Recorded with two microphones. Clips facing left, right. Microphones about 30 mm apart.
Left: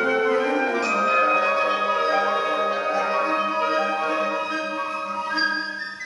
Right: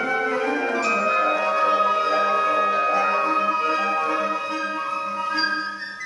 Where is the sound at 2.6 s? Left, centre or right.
Centre.